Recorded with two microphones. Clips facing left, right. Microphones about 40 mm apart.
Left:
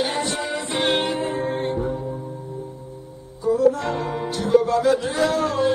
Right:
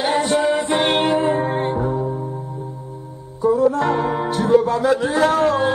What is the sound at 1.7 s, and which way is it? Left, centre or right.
Music, right.